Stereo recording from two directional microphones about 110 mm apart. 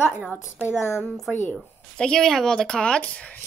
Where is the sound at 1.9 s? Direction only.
5° left (ahead or behind).